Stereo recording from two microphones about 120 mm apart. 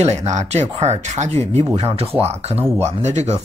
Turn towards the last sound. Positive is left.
turn(degrees=-75)  # may be behind; listen again after turning